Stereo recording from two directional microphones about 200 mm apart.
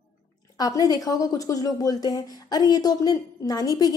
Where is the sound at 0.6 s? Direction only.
20° left (ahead or behind).